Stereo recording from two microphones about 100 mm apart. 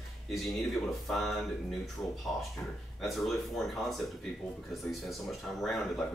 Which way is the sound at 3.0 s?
Centre (ahead or behind).